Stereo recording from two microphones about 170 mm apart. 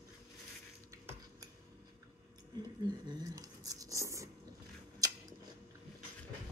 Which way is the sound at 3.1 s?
20° right (ahead or behind).